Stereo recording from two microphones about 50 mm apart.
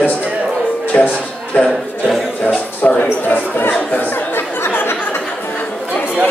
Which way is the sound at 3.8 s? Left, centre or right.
Left.